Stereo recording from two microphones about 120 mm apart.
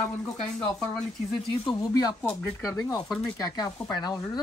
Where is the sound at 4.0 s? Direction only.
35° left (ahead or behind).